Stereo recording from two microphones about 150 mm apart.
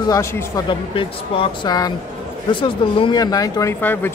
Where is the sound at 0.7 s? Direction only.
35° left (ahead or behind).